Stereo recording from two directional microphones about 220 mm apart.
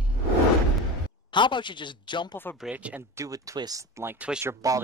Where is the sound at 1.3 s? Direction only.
20° left (ahead or behind).